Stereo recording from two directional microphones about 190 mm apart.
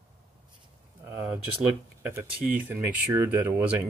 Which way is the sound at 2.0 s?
15° right (ahead or behind).